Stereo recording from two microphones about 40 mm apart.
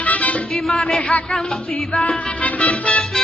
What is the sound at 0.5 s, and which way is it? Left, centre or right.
Music, centre.